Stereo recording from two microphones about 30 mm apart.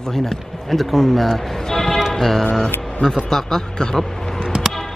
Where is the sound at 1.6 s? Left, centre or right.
Centre.